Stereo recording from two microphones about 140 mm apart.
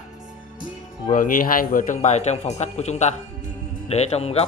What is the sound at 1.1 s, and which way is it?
A man's voice, 85° left.